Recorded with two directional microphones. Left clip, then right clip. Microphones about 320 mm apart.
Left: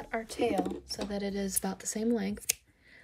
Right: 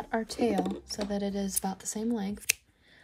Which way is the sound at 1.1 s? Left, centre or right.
Centre.